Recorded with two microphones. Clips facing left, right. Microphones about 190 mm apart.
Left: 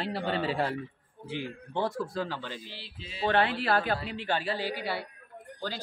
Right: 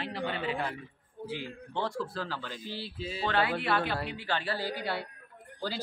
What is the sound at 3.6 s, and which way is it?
Speech, 40° left (ahead or behind).